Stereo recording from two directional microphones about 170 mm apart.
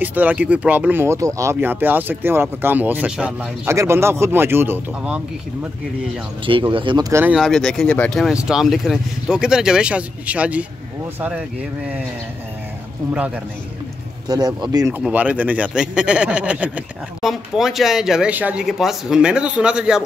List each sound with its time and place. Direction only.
0.0 s speech: 10° right (ahead or behind)
6.4 s speech: 30° right (ahead or behind)
7.1 s speech: 15° right (ahead or behind)
7.3 s speech: centre (ahead or behind)
14.2 s speech: 25° right (ahead or behind)
15.0 s speech: 10° right (ahead or behind)